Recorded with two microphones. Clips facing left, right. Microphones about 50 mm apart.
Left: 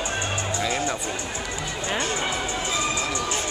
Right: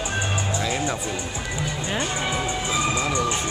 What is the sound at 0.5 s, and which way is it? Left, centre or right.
Music, centre.